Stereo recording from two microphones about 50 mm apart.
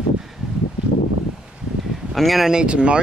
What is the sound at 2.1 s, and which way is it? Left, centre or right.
Speech, centre.